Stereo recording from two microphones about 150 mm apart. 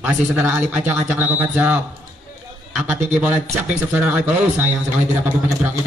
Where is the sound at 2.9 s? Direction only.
50° right (ahead or behind).